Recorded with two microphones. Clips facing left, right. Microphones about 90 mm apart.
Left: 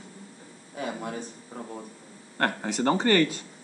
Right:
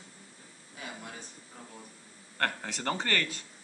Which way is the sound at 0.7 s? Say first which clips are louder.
Left 11 dB; 45° left (ahead or behind).